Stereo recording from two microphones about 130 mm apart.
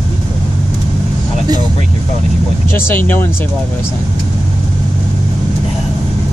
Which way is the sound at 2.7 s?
20° left (ahead or behind).